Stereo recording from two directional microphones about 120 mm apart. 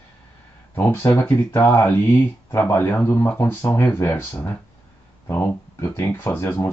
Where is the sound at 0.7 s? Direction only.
15° left (ahead or behind).